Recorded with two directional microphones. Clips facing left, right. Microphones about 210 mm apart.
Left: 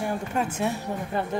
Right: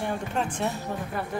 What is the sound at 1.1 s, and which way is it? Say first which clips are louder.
Speech: left 6 dB; 25° left (ahead or behind).